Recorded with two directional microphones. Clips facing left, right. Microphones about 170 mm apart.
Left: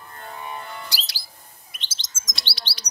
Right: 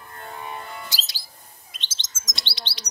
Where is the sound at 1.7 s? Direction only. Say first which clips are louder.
Right 1 dB; 20° right (ahead or behind).